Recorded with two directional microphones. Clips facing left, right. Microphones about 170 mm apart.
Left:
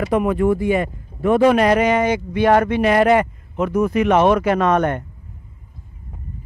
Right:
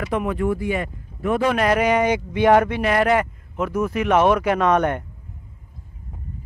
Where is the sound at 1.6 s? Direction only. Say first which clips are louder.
Left 3 dB; 5° right (ahead or behind).